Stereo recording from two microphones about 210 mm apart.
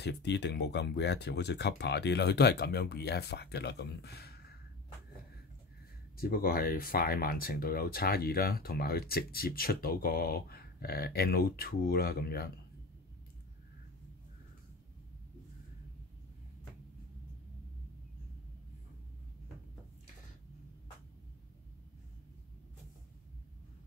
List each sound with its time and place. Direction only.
0.0 s speech: 55° left (ahead or behind)
6.1 s speech: 45° left (ahead or behind)